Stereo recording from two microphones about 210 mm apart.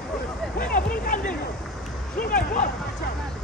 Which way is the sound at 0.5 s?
45° left (ahead or behind).